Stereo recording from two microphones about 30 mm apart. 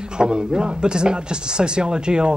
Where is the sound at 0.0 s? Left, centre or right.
Right.